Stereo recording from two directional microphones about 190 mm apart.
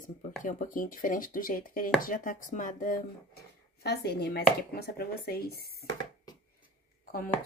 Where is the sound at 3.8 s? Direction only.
60° left (ahead or behind).